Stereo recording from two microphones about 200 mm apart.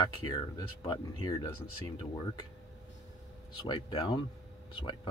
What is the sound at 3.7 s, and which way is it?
Speech, 25° left (ahead or behind).